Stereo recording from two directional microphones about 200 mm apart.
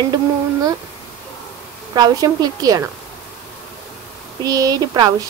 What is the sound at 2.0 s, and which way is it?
Speech, 20° right (ahead or behind).